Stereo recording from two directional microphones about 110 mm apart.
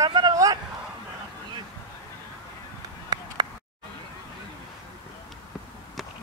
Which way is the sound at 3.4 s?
40° right (ahead or behind).